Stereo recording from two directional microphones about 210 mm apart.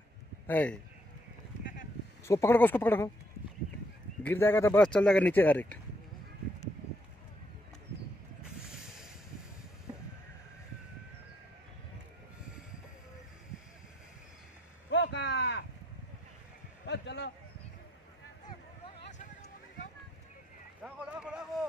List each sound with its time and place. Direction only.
0.5 s speech: 10° left (ahead or behind)
2.2 s speech: 15° left (ahead or behind)
4.2 s speech: 10° left (ahead or behind)
14.9 s a sound: 55° left (ahead or behind)
16.8 s a sound: 55° left (ahead or behind)
20.8 s vehicle: 5° right (ahead or behind)